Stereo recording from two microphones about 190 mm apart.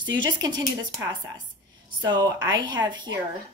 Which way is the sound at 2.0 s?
20° right (ahead or behind).